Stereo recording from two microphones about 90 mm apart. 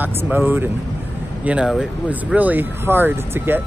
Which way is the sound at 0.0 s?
20° right (ahead or behind).